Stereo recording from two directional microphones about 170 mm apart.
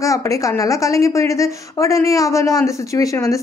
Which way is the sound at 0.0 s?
20° left (ahead or behind).